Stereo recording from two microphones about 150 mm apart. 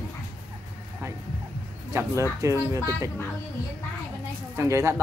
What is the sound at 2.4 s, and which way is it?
Speech, 20° right (ahead or behind).